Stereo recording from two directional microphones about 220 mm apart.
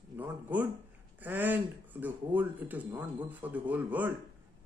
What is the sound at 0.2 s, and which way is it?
Speech, 5° right (ahead or behind).